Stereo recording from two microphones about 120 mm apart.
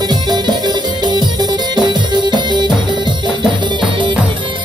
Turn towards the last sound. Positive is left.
turn(degrees=-40)  # may be behind; listen again after turning